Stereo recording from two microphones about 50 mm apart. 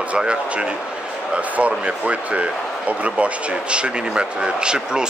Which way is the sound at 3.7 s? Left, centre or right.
Centre.